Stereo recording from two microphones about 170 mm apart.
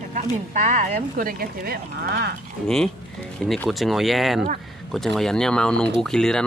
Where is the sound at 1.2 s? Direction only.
60° right (ahead or behind).